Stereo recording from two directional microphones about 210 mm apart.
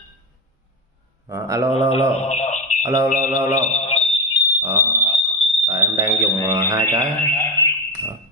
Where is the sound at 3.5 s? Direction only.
35° left (ahead or behind).